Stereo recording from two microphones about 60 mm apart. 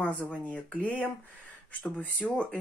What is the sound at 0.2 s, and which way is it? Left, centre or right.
Speech, left.